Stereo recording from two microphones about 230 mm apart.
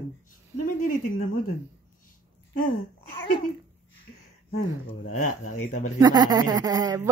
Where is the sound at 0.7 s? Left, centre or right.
Left.